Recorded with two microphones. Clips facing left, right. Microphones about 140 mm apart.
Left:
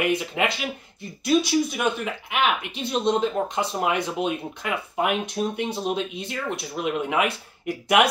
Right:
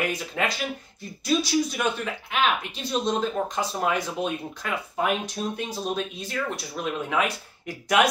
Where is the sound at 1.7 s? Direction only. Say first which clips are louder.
Left 2 dB; 15° left (ahead or behind).